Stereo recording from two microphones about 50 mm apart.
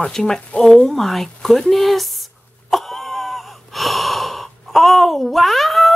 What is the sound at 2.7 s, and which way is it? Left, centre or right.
Gasp, centre.